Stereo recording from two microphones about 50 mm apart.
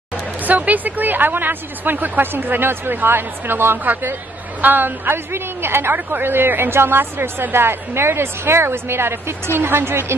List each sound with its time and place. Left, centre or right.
0.5 s speech: right
3.8 s a woman's voice: right